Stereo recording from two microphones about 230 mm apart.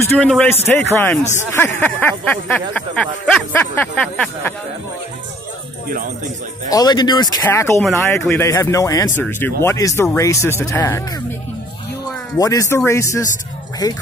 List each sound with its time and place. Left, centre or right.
0.0 s speech: centre
5.9 s speech: right
6.7 s speech: centre
12.4 s speech: centre